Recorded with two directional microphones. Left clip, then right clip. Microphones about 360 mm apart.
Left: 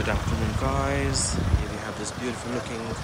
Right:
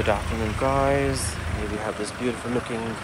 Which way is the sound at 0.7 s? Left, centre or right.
Centre.